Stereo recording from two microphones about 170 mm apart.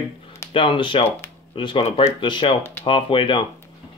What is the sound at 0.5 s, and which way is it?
Speech, 30° left (ahead or behind).